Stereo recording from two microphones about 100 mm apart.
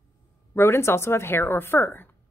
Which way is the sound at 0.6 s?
25° left (ahead or behind).